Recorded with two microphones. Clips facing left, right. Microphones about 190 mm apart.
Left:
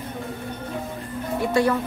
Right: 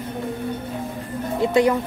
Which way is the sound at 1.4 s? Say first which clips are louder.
Right 3 dB; 20° right (ahead or behind).